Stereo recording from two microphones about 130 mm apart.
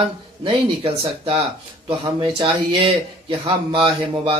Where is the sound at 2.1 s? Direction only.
45° right (ahead or behind).